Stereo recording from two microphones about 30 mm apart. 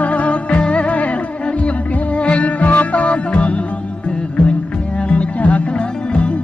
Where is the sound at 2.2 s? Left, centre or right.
Left.